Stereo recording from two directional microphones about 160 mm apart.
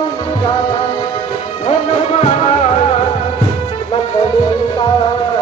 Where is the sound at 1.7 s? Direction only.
40° left (ahead or behind).